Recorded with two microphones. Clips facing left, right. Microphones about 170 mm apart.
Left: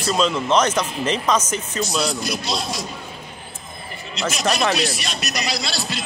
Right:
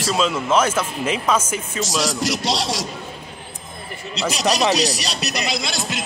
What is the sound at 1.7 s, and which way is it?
A man's voice, 90° right.